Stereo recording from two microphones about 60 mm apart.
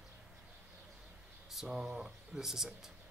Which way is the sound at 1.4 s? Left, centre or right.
Centre.